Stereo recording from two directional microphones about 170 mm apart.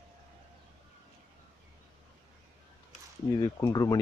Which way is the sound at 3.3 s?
20° left (ahead or behind).